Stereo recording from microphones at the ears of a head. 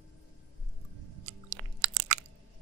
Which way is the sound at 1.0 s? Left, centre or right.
Right.